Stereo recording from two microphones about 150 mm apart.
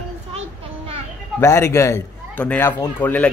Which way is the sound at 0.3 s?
45° right (ahead or behind).